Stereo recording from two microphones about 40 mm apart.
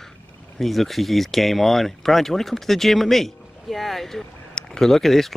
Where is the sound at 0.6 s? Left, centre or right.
Centre.